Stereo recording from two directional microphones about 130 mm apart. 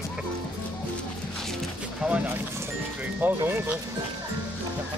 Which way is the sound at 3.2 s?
15° right (ahead or behind).